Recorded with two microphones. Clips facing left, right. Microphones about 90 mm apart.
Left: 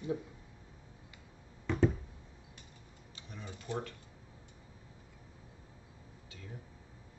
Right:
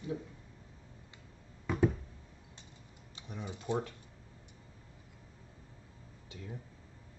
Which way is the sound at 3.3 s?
20° right (ahead or behind).